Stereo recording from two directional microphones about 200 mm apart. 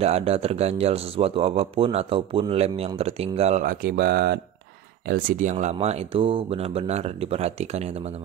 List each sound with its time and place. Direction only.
0.0 s speech: 30° right (ahead or behind)